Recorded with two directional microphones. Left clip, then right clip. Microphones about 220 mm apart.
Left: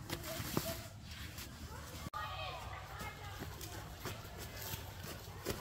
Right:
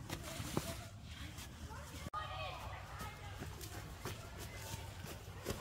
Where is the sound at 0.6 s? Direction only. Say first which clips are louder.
Left 2 dB; 20° left (ahead or behind).